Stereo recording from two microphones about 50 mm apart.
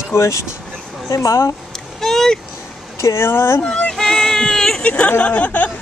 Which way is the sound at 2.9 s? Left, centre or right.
Left.